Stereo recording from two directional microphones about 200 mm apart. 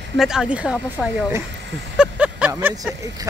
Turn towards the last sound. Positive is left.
turn(degrees=-15)  # may be behind; listen again after turning